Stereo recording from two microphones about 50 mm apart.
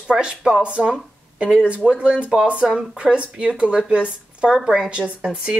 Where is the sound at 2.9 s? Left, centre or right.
Right.